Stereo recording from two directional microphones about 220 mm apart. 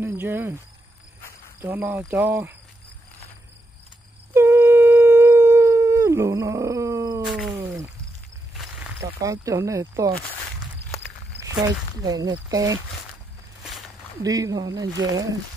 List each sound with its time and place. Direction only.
0.0 s speech: 10° right (ahead or behind)
1.6 s speech: 10° right (ahead or behind)
4.3 s howl: 10° right (ahead or behind)
7.2 s cat: centre (ahead or behind)
9.0 s speech: 15° right (ahead or behind)
11.5 s speech: 15° right (ahead or behind)
13.6 s a sound: centre (ahead or behind)
14.2 s speech: 15° right (ahead or behind)